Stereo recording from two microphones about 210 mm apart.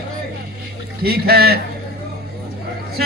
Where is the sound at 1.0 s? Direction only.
50° right (ahead or behind).